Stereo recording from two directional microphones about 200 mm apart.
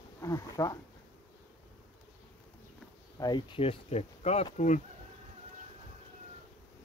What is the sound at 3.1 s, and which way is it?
Speech, 20° left (ahead or behind).